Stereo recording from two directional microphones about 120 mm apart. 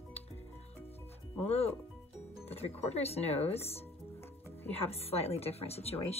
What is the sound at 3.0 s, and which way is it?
Speech, 60° left (ahead or behind).